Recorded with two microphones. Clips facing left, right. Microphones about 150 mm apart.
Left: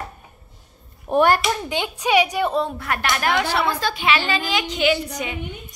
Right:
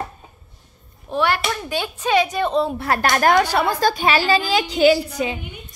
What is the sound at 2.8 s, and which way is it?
A woman's voice, 35° right (ahead or behind).